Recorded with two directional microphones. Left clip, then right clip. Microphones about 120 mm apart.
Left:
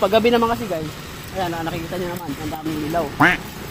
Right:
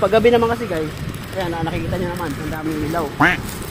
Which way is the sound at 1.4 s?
20° left (ahead or behind).